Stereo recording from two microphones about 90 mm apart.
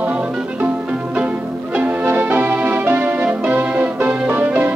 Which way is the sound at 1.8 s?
20° right (ahead or behind).